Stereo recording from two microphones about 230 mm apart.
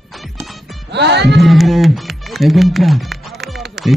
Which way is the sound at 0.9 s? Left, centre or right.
Right.